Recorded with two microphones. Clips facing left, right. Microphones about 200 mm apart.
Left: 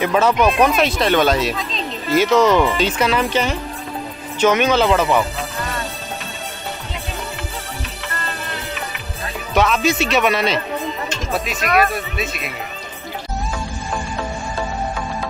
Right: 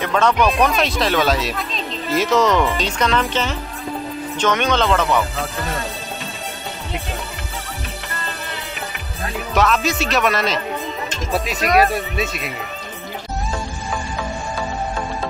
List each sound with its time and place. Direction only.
0.0 s speech: 5° left (ahead or behind)
9.5 s speech: centre (ahead or behind)
11.3 s speech: 35° right (ahead or behind)